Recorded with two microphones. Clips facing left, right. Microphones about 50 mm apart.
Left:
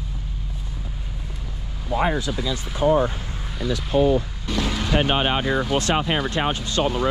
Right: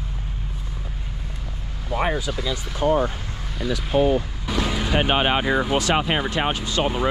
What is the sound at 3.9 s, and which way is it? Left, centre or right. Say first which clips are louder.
Speech: left 1 dB; right.